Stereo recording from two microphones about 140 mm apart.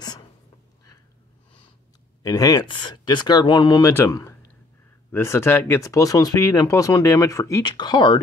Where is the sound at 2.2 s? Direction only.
25° left (ahead or behind).